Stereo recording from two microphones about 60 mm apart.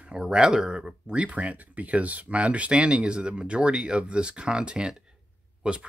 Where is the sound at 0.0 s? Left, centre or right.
Centre.